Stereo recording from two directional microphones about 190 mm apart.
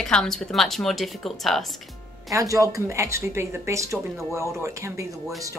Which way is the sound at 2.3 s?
15° right (ahead or behind).